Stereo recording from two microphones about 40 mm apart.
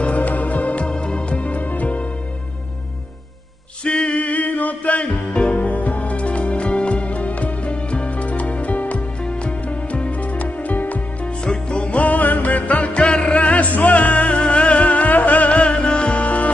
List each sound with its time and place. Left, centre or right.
0.0 s music: left
0.8 s music: left
3.8 s music: left
11.4 s music: left